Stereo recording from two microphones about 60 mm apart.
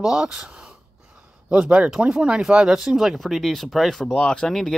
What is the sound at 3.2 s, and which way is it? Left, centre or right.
Speech, centre.